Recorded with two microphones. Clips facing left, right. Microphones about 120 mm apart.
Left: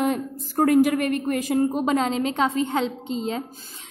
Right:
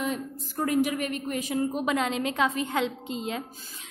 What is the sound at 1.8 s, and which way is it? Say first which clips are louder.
A woman's voice: left 5 dB; 30° left (ahead or behind).